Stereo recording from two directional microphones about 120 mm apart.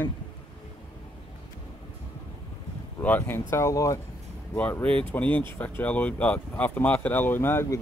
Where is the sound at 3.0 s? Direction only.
15° left (ahead or behind).